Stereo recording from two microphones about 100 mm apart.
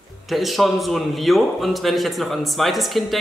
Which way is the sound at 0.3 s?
Centre (ahead or behind).